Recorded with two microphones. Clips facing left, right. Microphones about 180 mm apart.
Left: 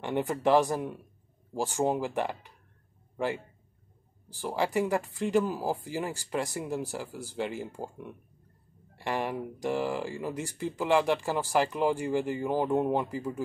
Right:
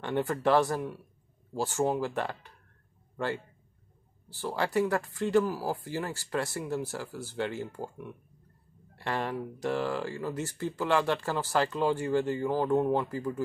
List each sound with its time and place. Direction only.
0.0 s speech: 15° left (ahead or behind)
4.3 s speech: 15° left (ahead or behind)